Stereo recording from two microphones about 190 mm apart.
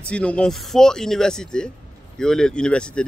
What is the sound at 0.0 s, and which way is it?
Speech, 5° left (ahead or behind).